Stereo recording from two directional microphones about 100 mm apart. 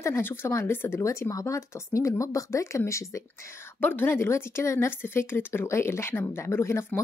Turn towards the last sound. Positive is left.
turn(degrees=25)  # may be behind; listen again after turning